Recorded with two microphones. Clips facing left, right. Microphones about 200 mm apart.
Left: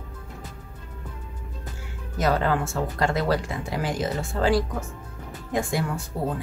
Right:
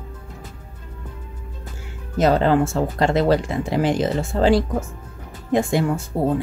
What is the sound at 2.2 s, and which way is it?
Speech, 25° right (ahead or behind).